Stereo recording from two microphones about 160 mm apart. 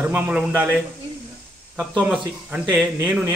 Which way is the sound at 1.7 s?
5° right (ahead or behind).